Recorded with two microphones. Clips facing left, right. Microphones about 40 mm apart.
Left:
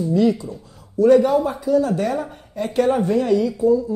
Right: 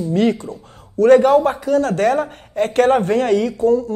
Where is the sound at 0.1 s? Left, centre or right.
Right.